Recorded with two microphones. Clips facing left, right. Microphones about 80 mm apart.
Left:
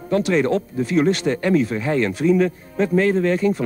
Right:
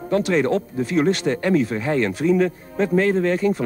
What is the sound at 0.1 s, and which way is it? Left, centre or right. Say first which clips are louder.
Speech: left 1 dB; right.